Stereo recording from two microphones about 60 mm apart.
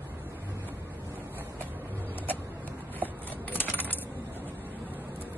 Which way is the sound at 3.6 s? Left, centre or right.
Left.